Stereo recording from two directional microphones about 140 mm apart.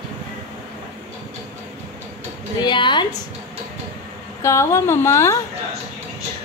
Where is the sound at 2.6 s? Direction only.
35° left (ahead or behind).